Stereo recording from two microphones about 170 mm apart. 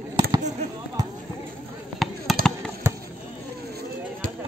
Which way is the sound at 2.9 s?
15° right (ahead or behind).